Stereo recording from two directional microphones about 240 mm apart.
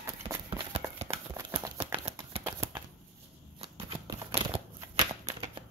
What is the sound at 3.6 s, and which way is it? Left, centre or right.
Shuffling cards, right.